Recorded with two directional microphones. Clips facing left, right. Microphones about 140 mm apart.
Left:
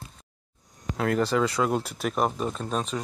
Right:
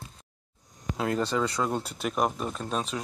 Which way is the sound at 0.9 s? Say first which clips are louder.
Left 3 dB; centre (ahead or behind).